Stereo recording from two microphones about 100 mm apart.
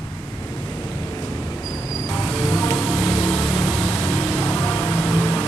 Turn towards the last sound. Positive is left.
turn(degrees=15)  # may be behind; listen again after turning